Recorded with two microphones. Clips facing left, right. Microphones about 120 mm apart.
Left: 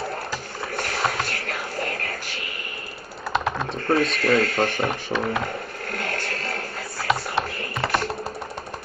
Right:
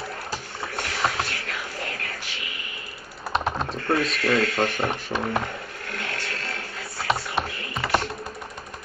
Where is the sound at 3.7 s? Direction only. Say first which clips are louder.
Left 5 dB; 40° left (ahead or behind).